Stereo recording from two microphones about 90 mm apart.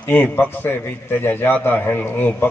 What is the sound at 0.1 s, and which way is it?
A man's voice, 20° left (ahead or behind).